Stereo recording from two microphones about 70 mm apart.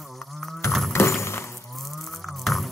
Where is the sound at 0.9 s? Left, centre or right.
Left.